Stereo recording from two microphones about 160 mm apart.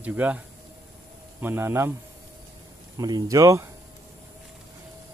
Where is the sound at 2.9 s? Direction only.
25° right (ahead or behind).